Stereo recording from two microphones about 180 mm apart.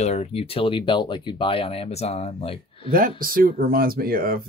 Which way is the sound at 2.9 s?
50° right (ahead or behind).